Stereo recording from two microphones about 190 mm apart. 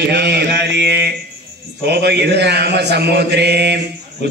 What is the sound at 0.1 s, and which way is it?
Mantra, 60° right (ahead or behind).